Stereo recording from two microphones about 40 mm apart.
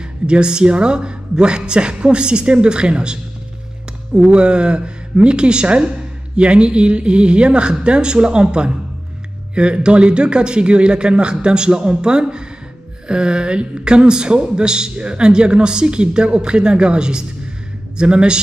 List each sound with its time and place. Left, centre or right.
0.3 s speech: right